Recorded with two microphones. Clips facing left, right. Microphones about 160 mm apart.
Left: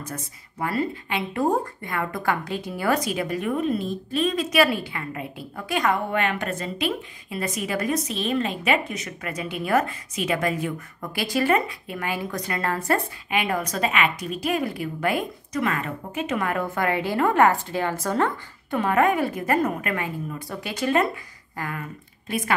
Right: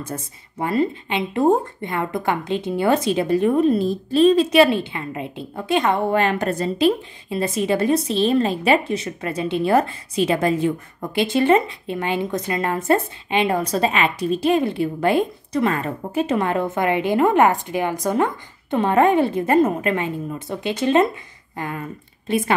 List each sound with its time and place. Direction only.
0.0 s speech: 25° right (ahead or behind)
18.8 s speech: 30° right (ahead or behind)